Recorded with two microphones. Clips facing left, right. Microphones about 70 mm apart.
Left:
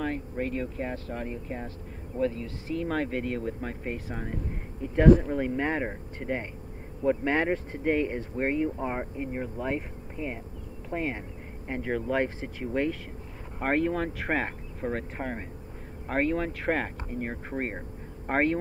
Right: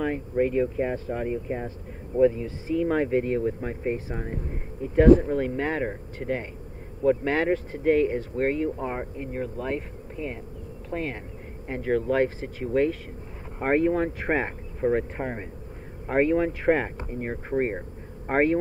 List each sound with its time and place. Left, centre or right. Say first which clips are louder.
0.0 s speech: right 6 dB; centre
5.3 s speech: right 2 dB; centre